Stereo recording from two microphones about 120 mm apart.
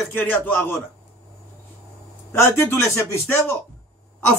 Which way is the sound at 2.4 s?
20° left (ahead or behind).